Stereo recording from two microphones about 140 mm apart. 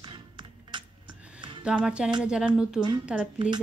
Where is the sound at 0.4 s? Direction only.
35° right (ahead or behind).